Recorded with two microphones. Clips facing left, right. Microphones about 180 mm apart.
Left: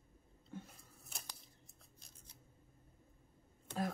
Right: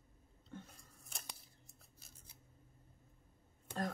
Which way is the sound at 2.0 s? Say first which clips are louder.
Even; 5° right (ahead or behind).